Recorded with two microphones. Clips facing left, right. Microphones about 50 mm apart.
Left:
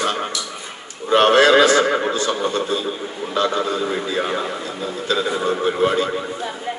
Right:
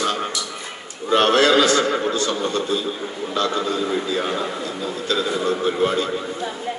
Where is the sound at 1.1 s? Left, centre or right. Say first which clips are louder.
Left 3 dB; centre.